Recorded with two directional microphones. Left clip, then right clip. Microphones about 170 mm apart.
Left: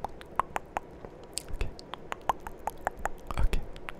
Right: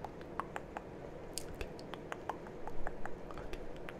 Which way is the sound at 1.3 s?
35° left (ahead or behind).